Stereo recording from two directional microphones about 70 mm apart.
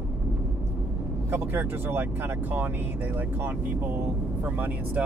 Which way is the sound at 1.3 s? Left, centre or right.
Right.